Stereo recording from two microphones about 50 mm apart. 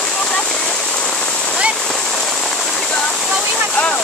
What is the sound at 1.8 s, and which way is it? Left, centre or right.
Rain, centre.